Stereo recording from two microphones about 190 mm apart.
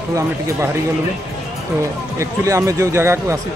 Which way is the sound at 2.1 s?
15° right (ahead or behind).